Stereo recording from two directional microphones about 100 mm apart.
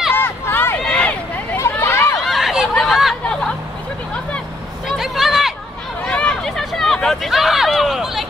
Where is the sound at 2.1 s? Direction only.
Centre (ahead or behind).